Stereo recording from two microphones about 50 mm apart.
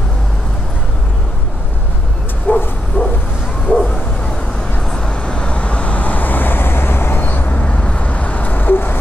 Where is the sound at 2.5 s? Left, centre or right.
Left.